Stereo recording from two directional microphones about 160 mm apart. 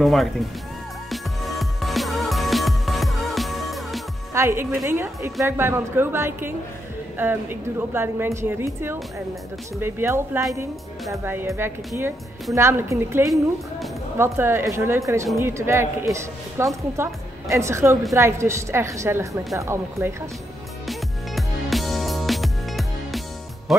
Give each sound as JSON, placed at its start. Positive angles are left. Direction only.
{"t": 0.0, "sound": "speech", "side_deg": 0}
{"t": 1.1, "sound": "music", "side_deg": 0}
{"t": 4.3, "sound": "a woman's voice", "side_deg": -15}
{"t": 20.8, "sound": "music", "side_deg": 0}
{"t": 23.7, "sound": "speech", "side_deg": 0}